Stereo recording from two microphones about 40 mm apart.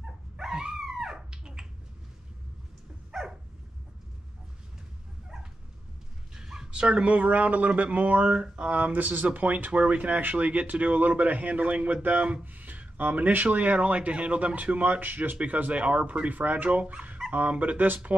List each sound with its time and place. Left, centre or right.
0.0 s dog: centre
3.1 s dog: centre
6.3 s a sound: centre
6.7 s speech: right
8.3 s speech: right
8.7 s speech: right
14.5 s speech: right